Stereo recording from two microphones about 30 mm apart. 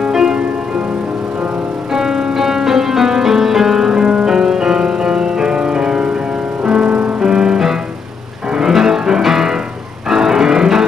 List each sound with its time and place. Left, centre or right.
0.1 s music: centre
2.0 s music: centre
3.9 s music: right